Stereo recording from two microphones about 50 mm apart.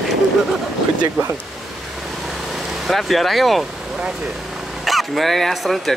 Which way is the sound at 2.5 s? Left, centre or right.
Centre.